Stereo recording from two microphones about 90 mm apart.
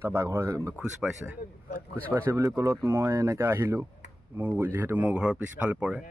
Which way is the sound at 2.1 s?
35° right (ahead or behind).